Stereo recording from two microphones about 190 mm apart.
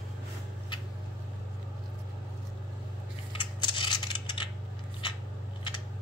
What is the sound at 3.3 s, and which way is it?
Coin, 25° left (ahead or behind).